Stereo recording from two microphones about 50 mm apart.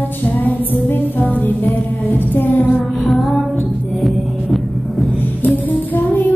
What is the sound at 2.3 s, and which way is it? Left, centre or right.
Music, left.